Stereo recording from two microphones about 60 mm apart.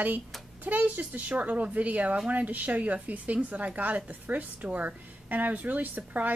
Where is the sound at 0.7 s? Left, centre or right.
Right.